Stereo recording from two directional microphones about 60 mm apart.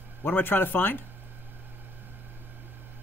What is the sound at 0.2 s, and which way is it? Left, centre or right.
Speech, left.